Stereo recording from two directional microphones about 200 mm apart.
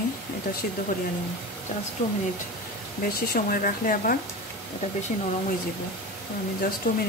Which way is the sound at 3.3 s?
45° left (ahead or behind).